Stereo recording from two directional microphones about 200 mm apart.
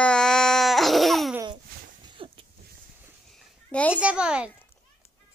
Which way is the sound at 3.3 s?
5° left (ahead or behind).